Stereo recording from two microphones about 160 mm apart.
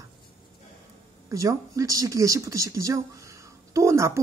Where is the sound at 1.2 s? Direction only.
20° right (ahead or behind).